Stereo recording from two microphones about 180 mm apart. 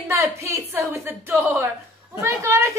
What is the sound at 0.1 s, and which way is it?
A woman's voice, 15° right (ahead or behind).